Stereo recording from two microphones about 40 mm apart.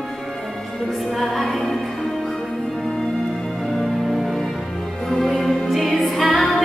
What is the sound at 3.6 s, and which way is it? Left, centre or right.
Music, centre.